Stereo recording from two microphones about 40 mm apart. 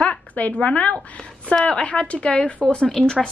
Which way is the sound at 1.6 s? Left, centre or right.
Left.